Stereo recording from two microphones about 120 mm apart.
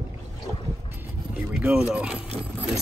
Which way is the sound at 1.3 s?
10° right (ahead or behind).